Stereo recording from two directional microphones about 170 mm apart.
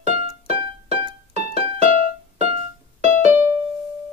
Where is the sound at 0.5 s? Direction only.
35° right (ahead or behind).